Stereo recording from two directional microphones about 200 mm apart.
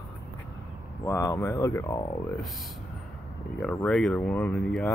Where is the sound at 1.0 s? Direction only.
15° left (ahead or behind).